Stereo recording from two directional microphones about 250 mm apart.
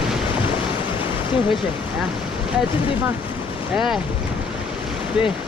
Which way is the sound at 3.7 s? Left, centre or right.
Centre.